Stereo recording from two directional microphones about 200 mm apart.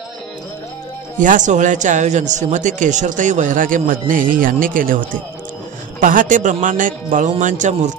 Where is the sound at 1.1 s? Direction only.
40° right (ahead or behind).